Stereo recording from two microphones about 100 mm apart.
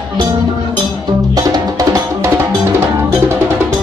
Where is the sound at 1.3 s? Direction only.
40° right (ahead or behind).